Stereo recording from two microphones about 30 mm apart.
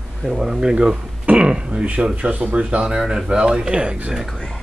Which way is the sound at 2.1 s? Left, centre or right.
Right.